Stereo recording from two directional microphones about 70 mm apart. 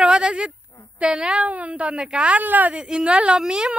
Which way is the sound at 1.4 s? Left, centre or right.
Right.